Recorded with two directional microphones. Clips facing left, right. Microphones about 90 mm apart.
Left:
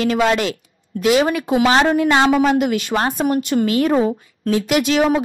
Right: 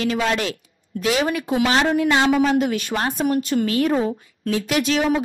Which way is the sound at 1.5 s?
45° left (ahead or behind).